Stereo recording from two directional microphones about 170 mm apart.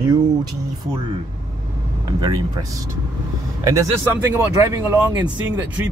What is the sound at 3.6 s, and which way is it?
Speech, 20° right (ahead or behind).